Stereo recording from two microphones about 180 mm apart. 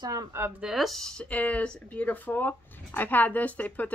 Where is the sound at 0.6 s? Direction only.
Centre (ahead or behind).